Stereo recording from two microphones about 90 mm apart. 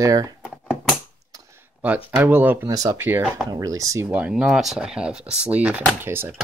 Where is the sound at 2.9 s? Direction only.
25° right (ahead or behind).